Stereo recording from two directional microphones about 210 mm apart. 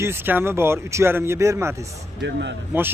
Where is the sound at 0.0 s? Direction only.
10° right (ahead or behind).